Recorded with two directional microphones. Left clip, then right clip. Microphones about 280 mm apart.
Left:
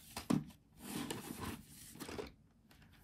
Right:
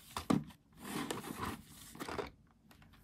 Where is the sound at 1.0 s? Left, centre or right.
Right.